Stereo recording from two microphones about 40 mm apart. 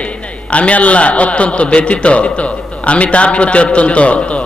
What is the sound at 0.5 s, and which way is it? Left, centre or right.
A man's voice, left.